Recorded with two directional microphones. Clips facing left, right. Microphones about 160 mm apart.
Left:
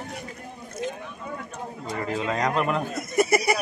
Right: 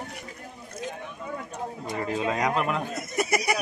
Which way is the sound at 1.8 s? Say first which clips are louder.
Even; 20° right (ahead or behind).